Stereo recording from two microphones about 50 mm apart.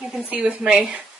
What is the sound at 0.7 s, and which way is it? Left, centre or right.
Speech, centre.